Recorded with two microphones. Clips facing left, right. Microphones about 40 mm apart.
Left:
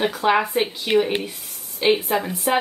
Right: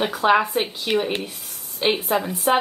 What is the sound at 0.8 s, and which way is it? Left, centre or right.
Speech, left.